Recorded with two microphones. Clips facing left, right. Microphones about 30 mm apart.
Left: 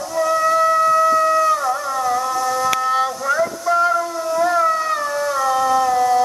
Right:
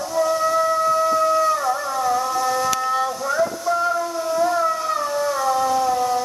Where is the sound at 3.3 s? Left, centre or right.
Centre.